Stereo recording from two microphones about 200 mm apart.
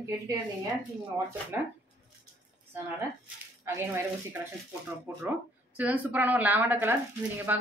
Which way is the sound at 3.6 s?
10° right (ahead or behind).